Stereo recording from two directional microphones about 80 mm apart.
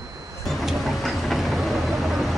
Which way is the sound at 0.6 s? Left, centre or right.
Centre.